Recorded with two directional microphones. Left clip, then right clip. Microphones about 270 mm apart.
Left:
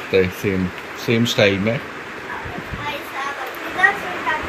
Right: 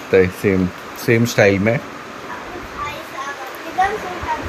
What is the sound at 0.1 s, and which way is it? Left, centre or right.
Speech, centre.